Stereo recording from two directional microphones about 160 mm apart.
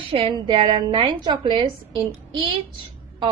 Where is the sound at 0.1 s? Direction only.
35° right (ahead or behind).